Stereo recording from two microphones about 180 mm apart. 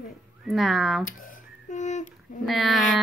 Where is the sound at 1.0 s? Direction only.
50° left (ahead or behind).